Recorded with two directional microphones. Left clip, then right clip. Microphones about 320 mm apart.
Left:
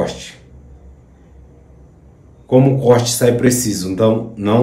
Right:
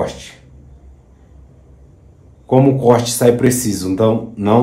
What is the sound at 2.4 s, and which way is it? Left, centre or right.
Speech, centre.